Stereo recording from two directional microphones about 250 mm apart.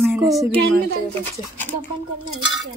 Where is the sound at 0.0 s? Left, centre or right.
Centre.